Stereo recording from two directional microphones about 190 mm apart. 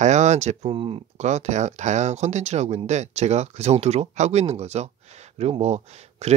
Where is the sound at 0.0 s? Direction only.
40° right (ahead or behind).